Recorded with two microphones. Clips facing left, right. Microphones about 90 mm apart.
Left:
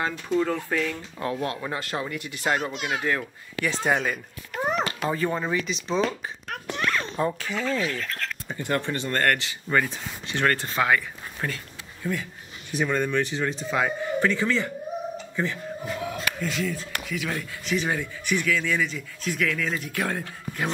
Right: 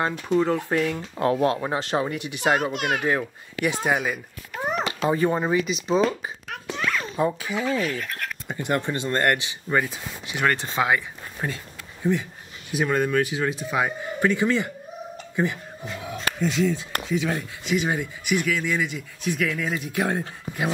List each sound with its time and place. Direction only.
0.6 s speech: 20° right (ahead or behind)
2.7 s a child's voice: 55° right (ahead or behind)
3.6 s speech: 10° right (ahead or behind)
5.0 s speech: 20° right (ahead or behind)
5.6 s a child's voice: 5° right (ahead or behind); by 12.3 s 20° right (ahead or behind)
12.7 s speech: 10° right (ahead or behind)
15.3 s a sound: 15° right (ahead or behind)
16.3 s speech: 20° right (ahead or behind)